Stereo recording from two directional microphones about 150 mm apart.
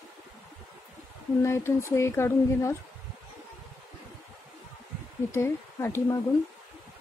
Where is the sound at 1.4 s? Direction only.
20° left (ahead or behind).